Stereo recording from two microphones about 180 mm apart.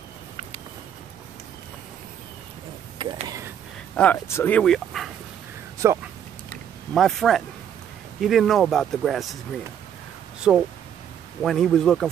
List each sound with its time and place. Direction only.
3.0 s a sound: 25° right (ahead or behind)
3.9 s speech: 10° left (ahead or behind)
5.8 s speech: 15° right (ahead or behind)
6.9 s speech: centre (ahead or behind)
10.5 s speech: 5° right (ahead or behind)